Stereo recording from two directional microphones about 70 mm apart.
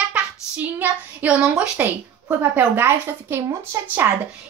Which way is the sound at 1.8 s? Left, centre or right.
Right.